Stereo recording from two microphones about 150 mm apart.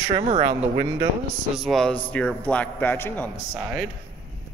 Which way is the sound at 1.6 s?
Centre (ahead or behind).